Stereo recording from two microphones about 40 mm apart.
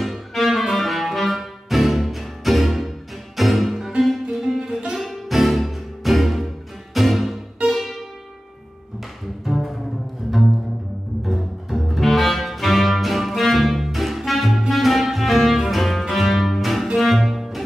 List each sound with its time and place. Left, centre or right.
0.0 s music: centre
4.9 s music: centre
9.4 s double bass: centre
11.2 s music: centre